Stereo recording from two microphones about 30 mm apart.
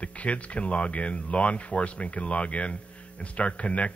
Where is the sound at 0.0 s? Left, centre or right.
Left.